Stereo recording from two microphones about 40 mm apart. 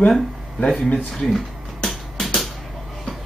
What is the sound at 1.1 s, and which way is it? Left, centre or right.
Finger snapping, centre.